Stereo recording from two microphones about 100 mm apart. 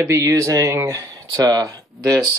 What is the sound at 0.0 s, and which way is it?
Speech, 30° right (ahead or behind).